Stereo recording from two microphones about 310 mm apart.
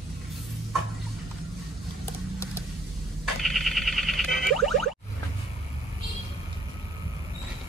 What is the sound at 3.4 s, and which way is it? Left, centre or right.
Boing, centre.